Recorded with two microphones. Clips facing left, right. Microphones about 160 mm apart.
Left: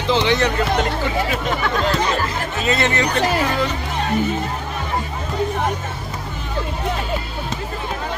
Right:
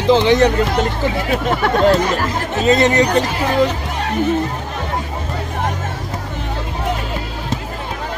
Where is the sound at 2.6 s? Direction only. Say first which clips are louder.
Right 7 dB; 40° right (ahead or behind).